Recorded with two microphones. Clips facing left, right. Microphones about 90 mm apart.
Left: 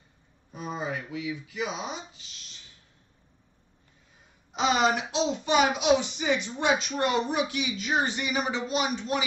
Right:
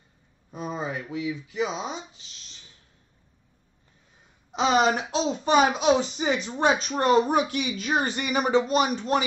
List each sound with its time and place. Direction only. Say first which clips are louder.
0.5 s speech: right 2 dB; 30° right (ahead or behind)
4.6 s speech: right 3 dB; 35° right (ahead or behind)